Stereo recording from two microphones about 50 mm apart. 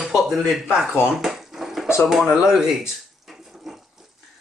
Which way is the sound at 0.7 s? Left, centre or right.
Centre.